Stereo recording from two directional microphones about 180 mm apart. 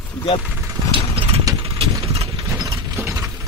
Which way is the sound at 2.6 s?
15° right (ahead or behind).